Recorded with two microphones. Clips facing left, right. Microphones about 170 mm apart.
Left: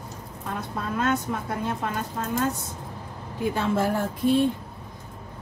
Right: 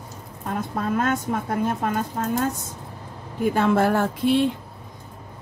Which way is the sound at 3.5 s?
60° right (ahead or behind).